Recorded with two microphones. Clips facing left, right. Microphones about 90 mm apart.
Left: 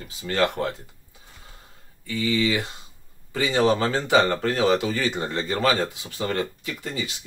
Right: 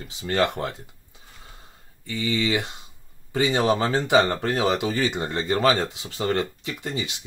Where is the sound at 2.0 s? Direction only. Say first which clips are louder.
Left 2 dB; 25° right (ahead or behind).